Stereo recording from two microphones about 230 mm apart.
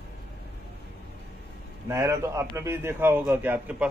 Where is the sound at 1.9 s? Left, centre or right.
Centre.